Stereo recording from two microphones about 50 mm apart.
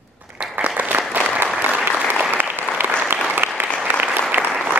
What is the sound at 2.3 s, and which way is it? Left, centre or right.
Applause, right.